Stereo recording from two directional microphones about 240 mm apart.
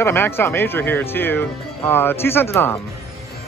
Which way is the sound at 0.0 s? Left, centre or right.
Centre.